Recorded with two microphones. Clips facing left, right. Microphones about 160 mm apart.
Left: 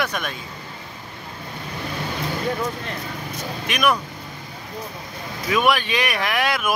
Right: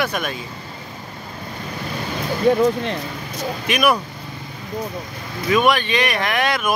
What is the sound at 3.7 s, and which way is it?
Speech, 5° right (ahead or behind).